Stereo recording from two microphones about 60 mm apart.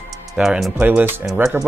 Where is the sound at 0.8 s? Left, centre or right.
Right.